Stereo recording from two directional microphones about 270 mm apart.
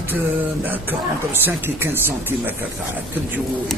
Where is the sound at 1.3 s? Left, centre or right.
Centre.